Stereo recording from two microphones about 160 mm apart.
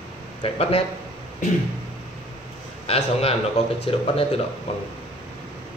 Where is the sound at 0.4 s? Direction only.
40° left (ahead or behind).